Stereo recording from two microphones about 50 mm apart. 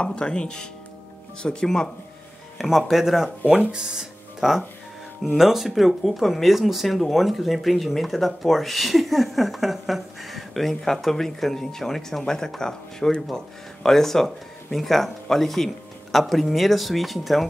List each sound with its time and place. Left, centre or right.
0.0 s speech: centre
2.9 s speech: centre